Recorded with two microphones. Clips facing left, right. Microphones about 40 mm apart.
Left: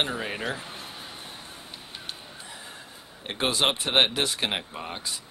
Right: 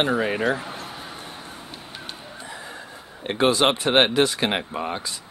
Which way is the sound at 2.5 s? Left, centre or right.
Right.